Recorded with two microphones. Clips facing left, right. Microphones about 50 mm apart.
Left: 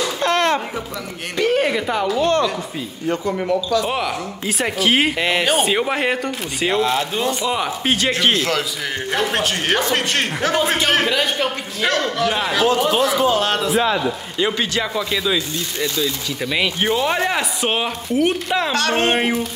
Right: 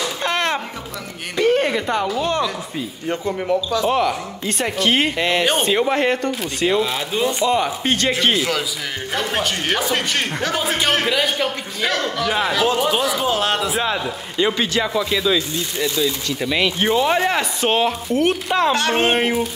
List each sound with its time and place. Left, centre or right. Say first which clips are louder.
0.2 s a sound: left 4 dB; centre
1.3 s speech: right 1 dB; centre
3.9 s speech: right 3 dB; centre
8.1 s speech: left 1 dB; centre
18.7 s speech: left 1 dB; right
19.1 s speech: even; centre